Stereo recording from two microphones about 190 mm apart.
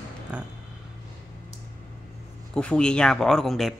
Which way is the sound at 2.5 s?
5° left (ahead or behind).